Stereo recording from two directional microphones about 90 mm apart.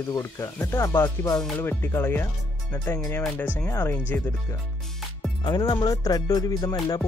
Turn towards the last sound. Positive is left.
turn(degrees=40)  # may be behind; listen again after turning